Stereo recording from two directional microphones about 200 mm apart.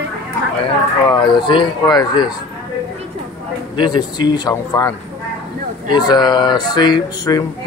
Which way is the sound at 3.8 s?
20° left (ahead or behind).